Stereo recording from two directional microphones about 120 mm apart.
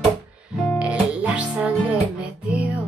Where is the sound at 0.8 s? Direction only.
10° right (ahead or behind).